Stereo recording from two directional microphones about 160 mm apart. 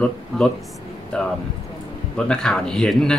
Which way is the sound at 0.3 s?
Centre (ahead or behind).